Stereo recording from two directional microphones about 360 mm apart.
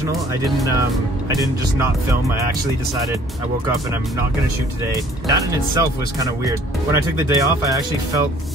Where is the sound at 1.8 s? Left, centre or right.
Centre.